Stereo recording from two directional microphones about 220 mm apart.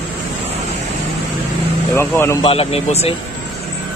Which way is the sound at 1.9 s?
10° left (ahead or behind).